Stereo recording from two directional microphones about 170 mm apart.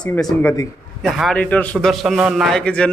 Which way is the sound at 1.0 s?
Centre (ahead or behind).